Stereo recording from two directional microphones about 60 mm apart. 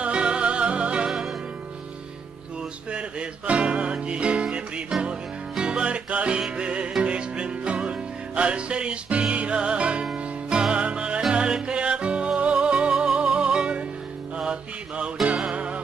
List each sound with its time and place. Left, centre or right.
0.0 s music: centre
2.9 s music: centre
14.3 s mantra: centre
15.4 s music: right